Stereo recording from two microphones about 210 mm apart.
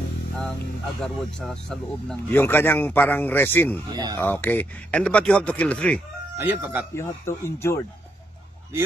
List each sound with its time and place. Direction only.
1.0 s speech: 5° left (ahead or behind)
3.9 s speech: 20° right (ahead or behind)
4.2 s speech: 10° left (ahead or behind)
6.3 s speech: 10° right (ahead or behind)
7.0 s speech: 10° left (ahead or behind)